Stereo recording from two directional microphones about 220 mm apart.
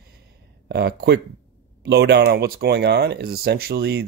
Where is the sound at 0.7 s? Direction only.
50° right (ahead or behind).